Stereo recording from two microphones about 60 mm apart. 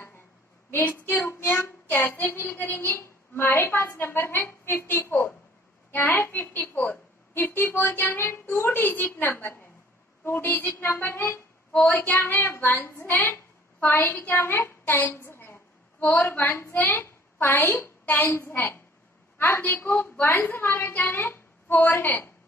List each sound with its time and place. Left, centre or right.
0.7 s a woman's voice: left
5.9 s a sound: left
6.1 s a woman's voice: left
11.9 s a woman's voice: left
13.0 s a sound: left
16.2 s a woman's voice: left
18.2 s a woman's voice: left
18.5 s a woman's voice: left